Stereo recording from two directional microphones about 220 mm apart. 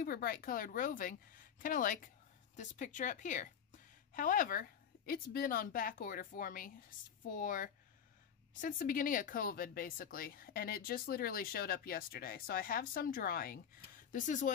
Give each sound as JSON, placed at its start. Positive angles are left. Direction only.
{"t": 0.0, "sound": "speech", "side_deg": 40}